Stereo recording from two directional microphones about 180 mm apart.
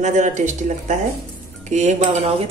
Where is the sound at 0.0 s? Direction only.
45° right (ahead or behind).